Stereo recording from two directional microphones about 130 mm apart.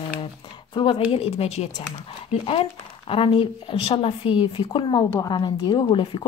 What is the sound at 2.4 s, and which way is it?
Speech, 45° left (ahead or behind).